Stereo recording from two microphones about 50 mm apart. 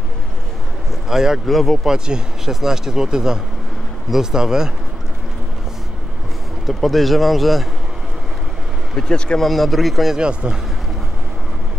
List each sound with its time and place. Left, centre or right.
1.0 s speech: centre
1.5 s speech: centre
1.9 s speech: centre
6.6 s speech: centre
8.9 s speech: centre
9.4 s speech: centre
10.1 s speech: centre